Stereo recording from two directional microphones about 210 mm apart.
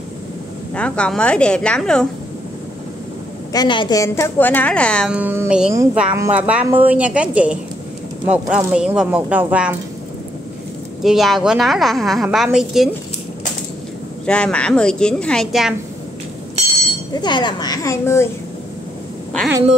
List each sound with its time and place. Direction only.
0.7 s a woman's voice: 5° left (ahead or behind)
3.5 s a woman's voice: 20° left (ahead or behind); by 9.8 s 5° right (ahead or behind)
11.0 s a woman's voice: centre (ahead or behind)
14.2 s a woman's voice: 5° left (ahead or behind)
17.1 s speech: 20° left (ahead or behind)